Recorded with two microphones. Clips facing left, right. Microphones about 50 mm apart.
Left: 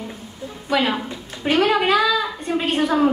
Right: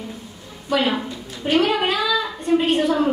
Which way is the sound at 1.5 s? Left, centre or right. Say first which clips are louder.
Left 2 dB; left.